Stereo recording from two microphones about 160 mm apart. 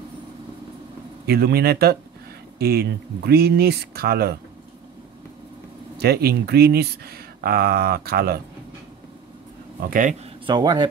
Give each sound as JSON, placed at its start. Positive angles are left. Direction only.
{"t": 1.2, "sound": "speech", "side_deg": -80}
{"t": 5.9, "sound": "speech", "side_deg": -80}
{"t": 9.8, "sound": "speech", "side_deg": -60}
{"t": 10.4, "sound": "speech", "side_deg": -25}